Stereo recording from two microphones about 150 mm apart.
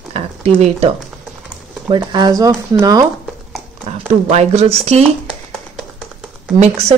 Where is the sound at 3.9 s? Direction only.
45° right (ahead or behind).